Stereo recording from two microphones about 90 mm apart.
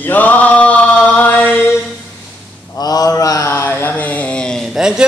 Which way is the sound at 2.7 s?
45° left (ahead or behind).